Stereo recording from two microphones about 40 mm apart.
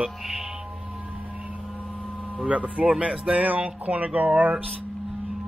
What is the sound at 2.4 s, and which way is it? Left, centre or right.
Speech, right.